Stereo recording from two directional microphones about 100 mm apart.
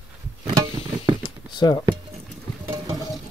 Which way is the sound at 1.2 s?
45° left (ahead or behind).